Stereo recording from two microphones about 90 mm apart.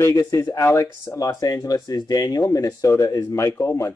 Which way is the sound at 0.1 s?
35° left (ahead or behind).